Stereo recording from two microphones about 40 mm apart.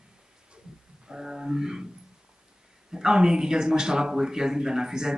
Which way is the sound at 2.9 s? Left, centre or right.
Centre.